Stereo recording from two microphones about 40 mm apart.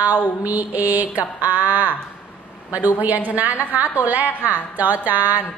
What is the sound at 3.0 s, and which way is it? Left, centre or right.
A woman's voice, right.